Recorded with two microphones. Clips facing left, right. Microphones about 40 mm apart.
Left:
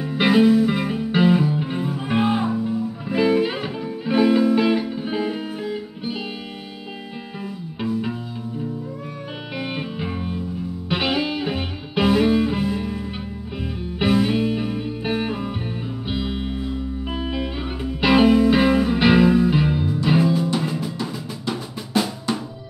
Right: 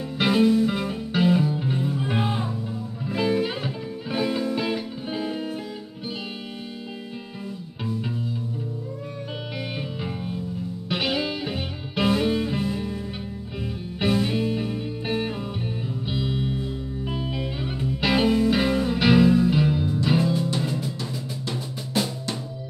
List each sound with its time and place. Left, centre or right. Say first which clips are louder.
0.0 s music: left 4 dB; centre
9.8 s music: left 4 dB; centre